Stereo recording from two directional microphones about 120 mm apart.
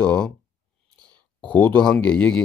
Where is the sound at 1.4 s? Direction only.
10° left (ahead or behind).